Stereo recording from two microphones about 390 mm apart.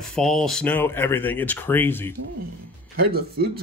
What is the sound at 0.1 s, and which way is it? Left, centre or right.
Speech, centre.